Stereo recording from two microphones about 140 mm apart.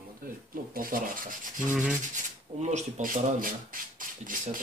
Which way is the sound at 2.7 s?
75° right (ahead or behind).